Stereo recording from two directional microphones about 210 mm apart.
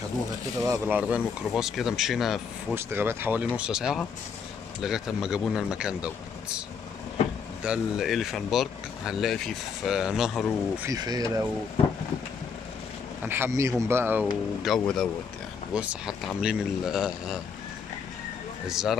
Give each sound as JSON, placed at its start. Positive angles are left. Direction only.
{"t": 0.7, "sound": "speech", "side_deg": -10}
{"t": 7.6, "sound": "speech", "side_deg": -5}
{"t": 10.8, "sound": "speech", "side_deg": -15}
{"t": 13.2, "sound": "speech", "side_deg": -10}
{"t": 18.7, "sound": "speech", "side_deg": 0}